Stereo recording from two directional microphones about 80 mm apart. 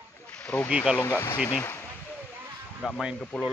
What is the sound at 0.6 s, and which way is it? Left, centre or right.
Speech, centre.